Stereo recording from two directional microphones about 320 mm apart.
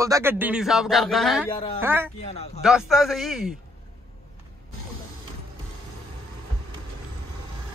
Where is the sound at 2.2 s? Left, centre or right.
Centre.